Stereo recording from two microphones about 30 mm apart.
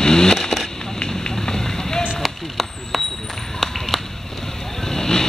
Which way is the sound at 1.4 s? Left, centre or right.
Centre.